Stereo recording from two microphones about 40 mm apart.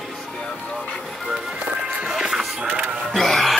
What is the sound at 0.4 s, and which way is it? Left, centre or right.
Music, left.